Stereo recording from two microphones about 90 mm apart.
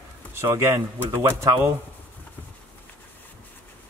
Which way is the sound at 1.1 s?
30° right (ahead or behind).